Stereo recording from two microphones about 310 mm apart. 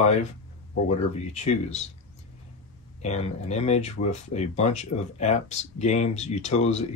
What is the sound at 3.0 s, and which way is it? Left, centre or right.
Speech, left.